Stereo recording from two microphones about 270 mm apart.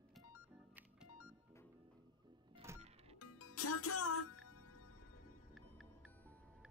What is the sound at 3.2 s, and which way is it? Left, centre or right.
Music, left.